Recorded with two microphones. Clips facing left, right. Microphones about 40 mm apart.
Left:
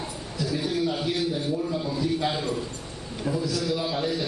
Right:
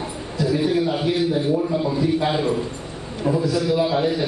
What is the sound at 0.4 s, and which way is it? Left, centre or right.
A man's voice, right.